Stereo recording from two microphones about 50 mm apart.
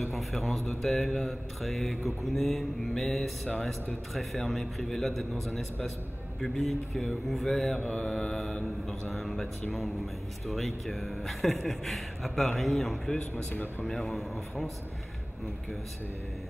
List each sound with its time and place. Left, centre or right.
0.0 s speech: centre
7.8 s mantra: left
9.1 s speech: centre
13.5 s speech: left
13.8 s speech: centre